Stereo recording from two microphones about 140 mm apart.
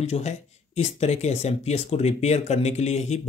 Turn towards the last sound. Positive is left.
turn(degrees=55)  # may be behind; listen again after turning